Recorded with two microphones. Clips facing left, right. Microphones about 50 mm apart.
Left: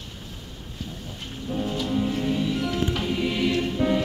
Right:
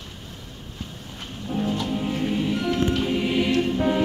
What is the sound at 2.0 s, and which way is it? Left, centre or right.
Music, centre.